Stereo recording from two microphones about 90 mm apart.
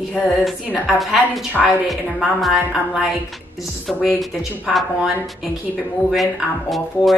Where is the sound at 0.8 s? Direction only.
5° right (ahead or behind).